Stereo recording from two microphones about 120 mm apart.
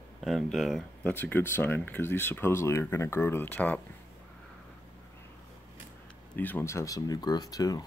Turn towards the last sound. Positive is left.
turn(degrees=30)  # may be behind; listen again after turning